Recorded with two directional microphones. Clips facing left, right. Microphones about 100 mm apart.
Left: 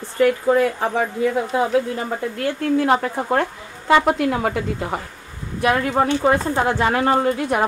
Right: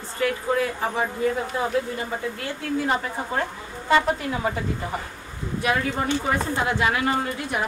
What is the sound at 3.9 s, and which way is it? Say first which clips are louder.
Speech: left 5 dB; 75° left (ahead or behind).